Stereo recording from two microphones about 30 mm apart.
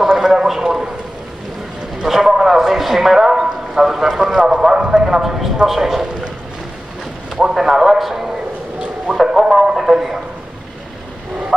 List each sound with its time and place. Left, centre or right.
0.0 s a sound: centre
0.6 s a man's voice: centre
2.0 s a man's voice: centre; by 5.0 s right
5.2 s a man's voice: centre
7.5 s a man's voice: centre